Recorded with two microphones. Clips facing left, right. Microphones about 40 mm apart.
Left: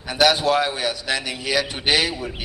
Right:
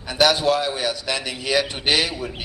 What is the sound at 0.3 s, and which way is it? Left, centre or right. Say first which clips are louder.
Speech: left 1 dB; left.